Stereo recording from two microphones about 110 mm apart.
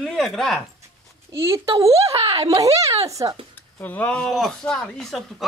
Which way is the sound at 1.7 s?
65° right (ahead or behind).